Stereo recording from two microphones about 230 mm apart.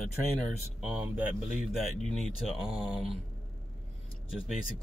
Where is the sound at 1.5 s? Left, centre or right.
Centre.